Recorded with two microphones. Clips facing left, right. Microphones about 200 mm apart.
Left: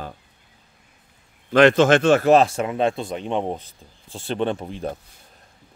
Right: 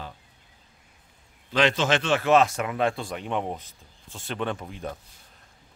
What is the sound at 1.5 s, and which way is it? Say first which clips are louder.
Speech: left 9 dB; 50° left (ahead or behind).